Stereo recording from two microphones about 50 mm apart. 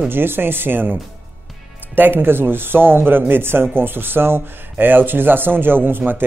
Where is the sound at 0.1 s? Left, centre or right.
Right.